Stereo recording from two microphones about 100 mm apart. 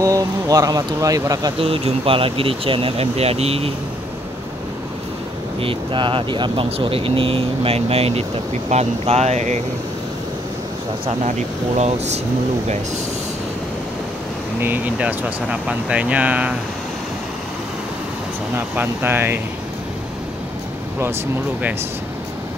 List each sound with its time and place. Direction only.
0.0 s speech: 35° right (ahead or behind)
1.6 s speech: 65° right (ahead or behind); by 3.7 s 85° right
5.6 s speech: 60° right (ahead or behind); by 9.4 s 90° right
14.6 s speech: 15° right (ahead or behind)
18.8 s speech: 20° right (ahead or behind)